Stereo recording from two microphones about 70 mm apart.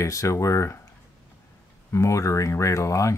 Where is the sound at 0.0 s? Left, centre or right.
Left.